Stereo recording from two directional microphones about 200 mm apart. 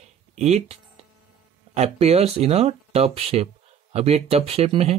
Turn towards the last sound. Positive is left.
turn(degrees=-30)  # may be behind; listen again after turning